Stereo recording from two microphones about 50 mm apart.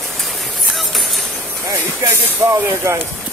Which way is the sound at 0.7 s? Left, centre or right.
Centre.